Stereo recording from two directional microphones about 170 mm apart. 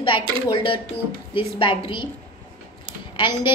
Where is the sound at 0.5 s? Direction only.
30° left (ahead or behind).